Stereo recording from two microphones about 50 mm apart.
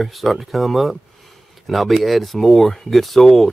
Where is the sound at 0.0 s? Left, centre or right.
Centre.